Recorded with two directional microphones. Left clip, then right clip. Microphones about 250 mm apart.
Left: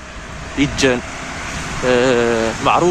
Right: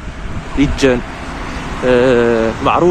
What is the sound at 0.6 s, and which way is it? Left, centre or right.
Speech, centre.